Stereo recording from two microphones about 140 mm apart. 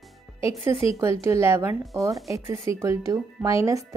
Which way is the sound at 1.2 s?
20° right (ahead or behind).